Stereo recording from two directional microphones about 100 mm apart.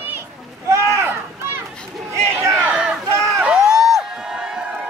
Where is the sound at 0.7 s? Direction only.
30° right (ahead or behind).